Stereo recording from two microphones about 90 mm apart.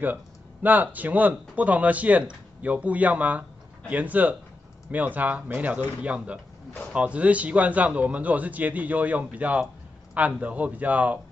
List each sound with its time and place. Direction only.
0.0 s speech: 20° right (ahead or behind)